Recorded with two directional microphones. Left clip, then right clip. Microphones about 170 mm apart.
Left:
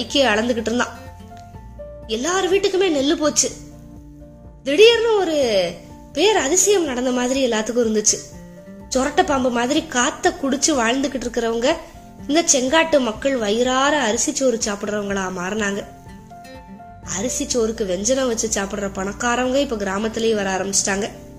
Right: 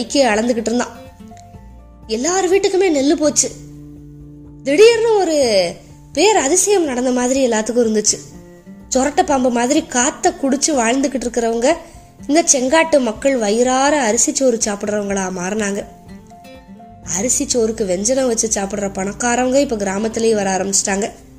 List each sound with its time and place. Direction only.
0.0 s a woman's voice: 20° right (ahead or behind)
2.0 s a woman's voice: 20° right (ahead or behind)
4.6 s a woman's voice: 20° right (ahead or behind)
17.0 s a woman's voice: 25° right (ahead or behind)